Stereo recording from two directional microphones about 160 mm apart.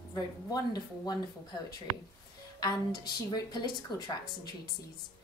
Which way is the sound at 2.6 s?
25° left (ahead or behind).